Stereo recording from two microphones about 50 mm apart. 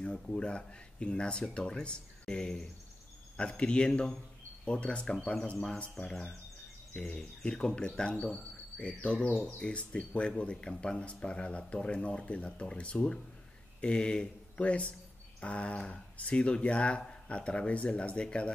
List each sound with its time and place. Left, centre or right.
0.0 s speech: centre
7.2 s speech: centre
9.3 s speech: left
9.6 s speech: left